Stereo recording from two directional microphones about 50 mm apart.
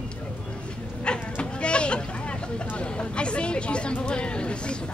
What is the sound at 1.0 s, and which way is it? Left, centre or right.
Sheep, centre.